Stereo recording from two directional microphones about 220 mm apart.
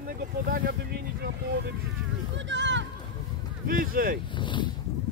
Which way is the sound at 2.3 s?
55° right (ahead or behind).